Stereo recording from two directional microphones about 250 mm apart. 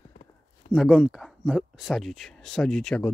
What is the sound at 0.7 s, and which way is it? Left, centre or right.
Speech, centre.